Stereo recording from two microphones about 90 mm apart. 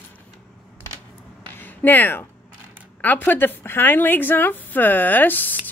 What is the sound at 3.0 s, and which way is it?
A woman's voice, 20° left (ahead or behind).